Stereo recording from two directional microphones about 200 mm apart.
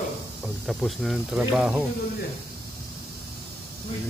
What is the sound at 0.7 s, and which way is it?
Speech, centre (ahead or behind).